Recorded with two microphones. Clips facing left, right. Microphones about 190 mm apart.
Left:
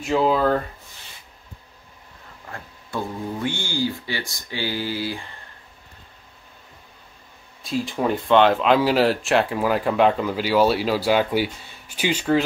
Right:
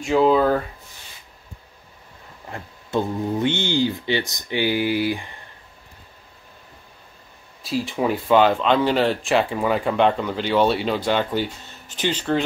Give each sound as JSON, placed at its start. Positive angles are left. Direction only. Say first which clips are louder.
{"t": 0.0, "sound": "speech", "louder": "right 3 dB", "side_deg": 0}
{"t": 2.5, "sound": "speech", "louder": "right 6 dB", "side_deg": -20}
{"t": 7.6, "sound": "speech", "louder": "right 1 dB", "side_deg": 0}